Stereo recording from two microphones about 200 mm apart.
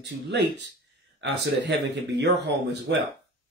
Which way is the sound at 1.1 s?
60° right (ahead or behind).